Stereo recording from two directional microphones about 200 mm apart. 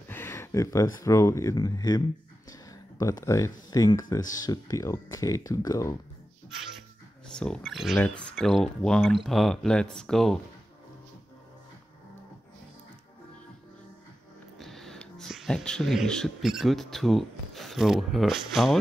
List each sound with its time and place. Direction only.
0.1 s speech: 10° left (ahead or behind)
2.5 s a sound: 20° left (ahead or behind)
3.7 s speech: 20° left (ahead or behind)
7.3 s speech: 5° left (ahead or behind)
14.6 s speech: centre (ahead or behind)